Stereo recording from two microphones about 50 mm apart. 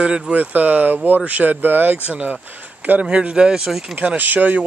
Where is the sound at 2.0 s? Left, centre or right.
Right.